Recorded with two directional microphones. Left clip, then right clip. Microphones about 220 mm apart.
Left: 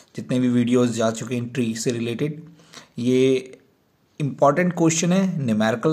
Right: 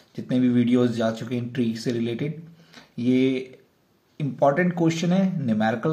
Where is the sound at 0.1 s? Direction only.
35° left (ahead or behind).